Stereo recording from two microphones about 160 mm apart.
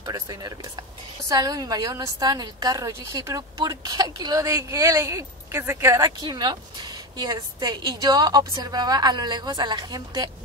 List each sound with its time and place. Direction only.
0.0 s a woman's voice: 25° right (ahead or behind)